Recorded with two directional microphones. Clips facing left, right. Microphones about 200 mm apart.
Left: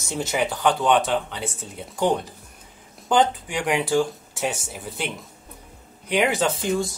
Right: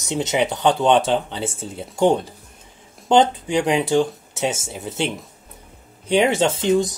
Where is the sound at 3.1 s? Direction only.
25° right (ahead or behind).